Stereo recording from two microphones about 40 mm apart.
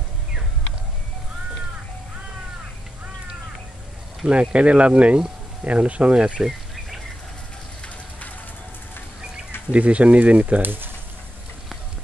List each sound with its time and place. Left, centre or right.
4.3 s speech: right
9.7 s speech: right
10.6 s speech: right